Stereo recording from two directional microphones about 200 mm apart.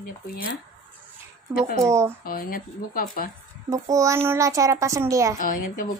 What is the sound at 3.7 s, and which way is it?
A child's voice, 15° right (ahead or behind).